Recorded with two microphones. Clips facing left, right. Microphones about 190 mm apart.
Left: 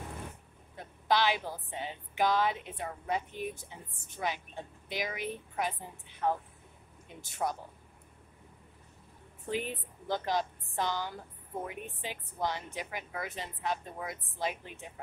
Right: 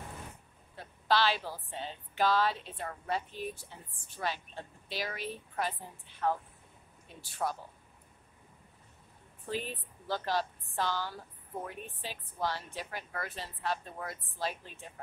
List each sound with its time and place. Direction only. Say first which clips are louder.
0.7 s speech: even; 15° left (ahead or behind)
9.5 s speech: left 2 dB; 15° left (ahead or behind)